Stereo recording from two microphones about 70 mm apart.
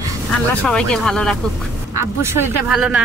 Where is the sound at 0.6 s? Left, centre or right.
Centre.